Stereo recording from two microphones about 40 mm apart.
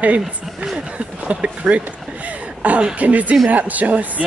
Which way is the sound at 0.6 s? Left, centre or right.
Right.